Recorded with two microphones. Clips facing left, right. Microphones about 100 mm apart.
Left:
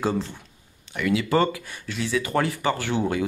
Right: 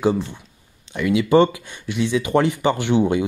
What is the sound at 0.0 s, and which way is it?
Speech, 15° right (ahead or behind).